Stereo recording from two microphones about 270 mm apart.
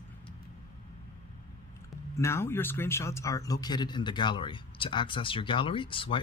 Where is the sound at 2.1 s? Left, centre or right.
Centre.